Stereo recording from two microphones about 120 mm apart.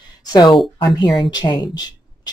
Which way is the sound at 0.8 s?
35° left (ahead or behind).